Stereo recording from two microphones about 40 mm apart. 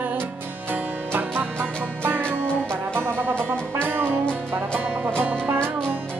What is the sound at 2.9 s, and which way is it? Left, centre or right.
Music, right.